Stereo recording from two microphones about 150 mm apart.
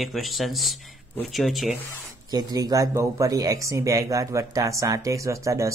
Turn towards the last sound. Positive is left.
turn(degrees=-20)  # may be behind; listen again after turning